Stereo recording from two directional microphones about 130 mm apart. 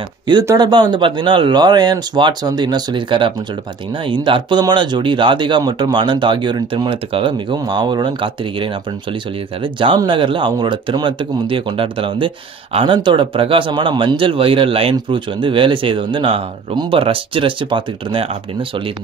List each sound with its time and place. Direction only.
0.6 s a man's voice: 30° right (ahead or behind)